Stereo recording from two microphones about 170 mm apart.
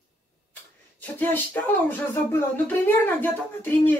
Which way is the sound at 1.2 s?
10° left (ahead or behind).